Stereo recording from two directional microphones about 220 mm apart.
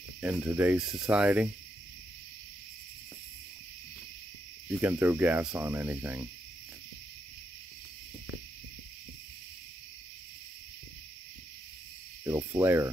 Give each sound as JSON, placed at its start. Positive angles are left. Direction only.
{"t": 0.2, "sound": "cricket", "side_deg": -10}
{"t": 4.6, "sound": "speech", "side_deg": -10}
{"t": 12.3, "sound": "cricket", "side_deg": -15}